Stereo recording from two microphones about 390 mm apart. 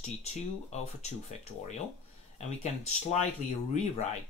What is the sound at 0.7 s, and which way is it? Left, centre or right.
Speech, centre.